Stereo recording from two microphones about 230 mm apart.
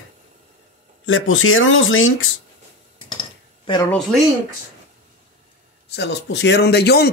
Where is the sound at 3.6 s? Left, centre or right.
Centre.